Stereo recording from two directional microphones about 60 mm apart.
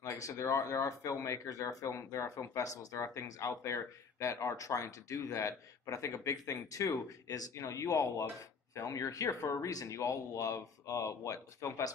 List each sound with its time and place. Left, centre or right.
0.0 s speech: left
7.5 s speech: left